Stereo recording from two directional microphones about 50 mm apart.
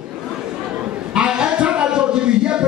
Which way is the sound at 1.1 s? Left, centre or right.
Centre.